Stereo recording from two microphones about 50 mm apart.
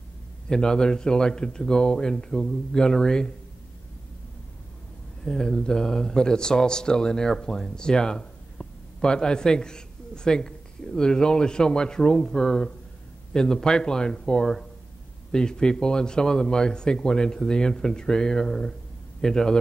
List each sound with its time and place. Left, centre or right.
0.5 s speech: centre
5.2 s speech: centre